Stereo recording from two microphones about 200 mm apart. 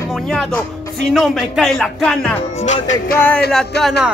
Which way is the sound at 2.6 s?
35° left (ahead or behind).